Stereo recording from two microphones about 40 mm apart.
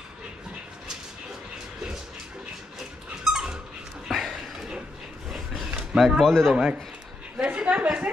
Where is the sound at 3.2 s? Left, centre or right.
Centre.